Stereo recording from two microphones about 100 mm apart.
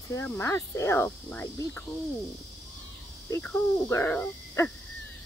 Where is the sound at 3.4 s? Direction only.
15° left (ahead or behind).